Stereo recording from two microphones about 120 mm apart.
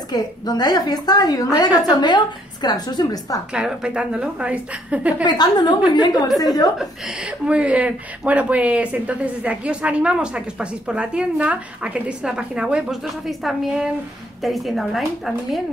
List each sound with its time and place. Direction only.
0.1 s a woman's voice: 35° left (ahead or behind)
3.5 s speech: 5° right (ahead or behind)
5.2 s a woman's voice: 35° left (ahead or behind)
6.8 s a woman's voice: 5° right (ahead or behind)